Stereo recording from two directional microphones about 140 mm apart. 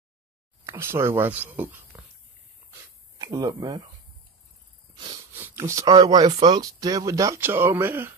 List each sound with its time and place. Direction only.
0.7 s speech: 20° right (ahead or behind)
3.2 s speech: 25° right (ahead or behind)
4.9 s a sound: 30° right (ahead or behind)
5.3 s speech: 20° right (ahead or behind)